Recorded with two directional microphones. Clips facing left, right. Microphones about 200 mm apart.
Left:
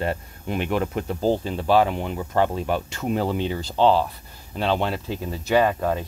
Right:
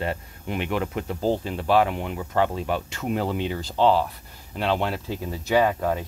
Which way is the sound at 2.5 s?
40° left (ahead or behind).